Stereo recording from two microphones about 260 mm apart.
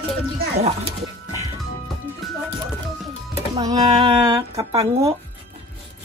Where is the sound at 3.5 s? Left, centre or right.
Centre.